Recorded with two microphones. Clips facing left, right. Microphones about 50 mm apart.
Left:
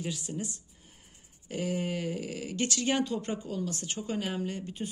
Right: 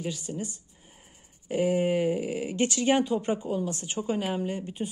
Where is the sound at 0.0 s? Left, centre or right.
Centre.